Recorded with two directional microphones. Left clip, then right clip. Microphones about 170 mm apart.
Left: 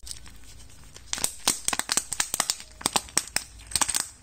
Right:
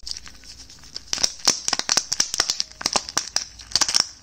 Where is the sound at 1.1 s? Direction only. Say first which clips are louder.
Right 7 dB; 25° right (ahead or behind).